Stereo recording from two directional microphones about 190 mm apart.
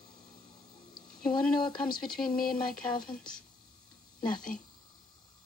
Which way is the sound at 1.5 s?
25° left (ahead or behind).